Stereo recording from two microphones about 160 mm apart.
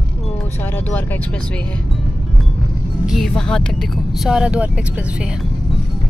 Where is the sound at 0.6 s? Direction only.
15° left (ahead or behind).